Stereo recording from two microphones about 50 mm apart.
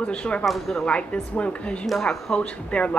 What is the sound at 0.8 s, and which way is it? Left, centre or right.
A woman's voice, left.